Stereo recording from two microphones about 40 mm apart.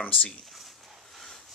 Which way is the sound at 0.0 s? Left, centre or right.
Left.